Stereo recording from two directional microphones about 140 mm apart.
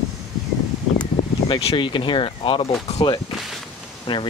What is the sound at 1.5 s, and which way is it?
Speech, 40° left (ahead or behind).